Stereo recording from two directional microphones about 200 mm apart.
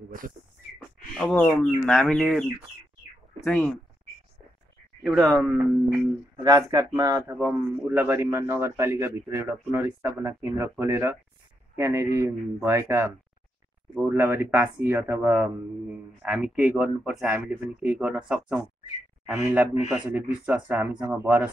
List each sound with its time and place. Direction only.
0.1 s a sound: 45° right (ahead or behind)
1.1 s speech: 5° left (ahead or behind)
5.0 s speech: centre (ahead or behind)
6.3 s speech: 20° right (ahead or behind)